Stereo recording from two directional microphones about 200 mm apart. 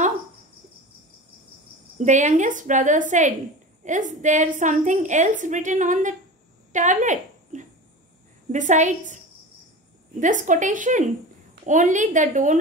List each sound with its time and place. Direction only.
2.0 s a woman's voice: 35° right (ahead or behind)
10.2 s a woman's voice: 40° right (ahead or behind)